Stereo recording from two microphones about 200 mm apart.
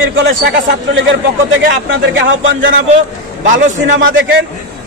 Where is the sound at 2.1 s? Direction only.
70° right (ahead or behind).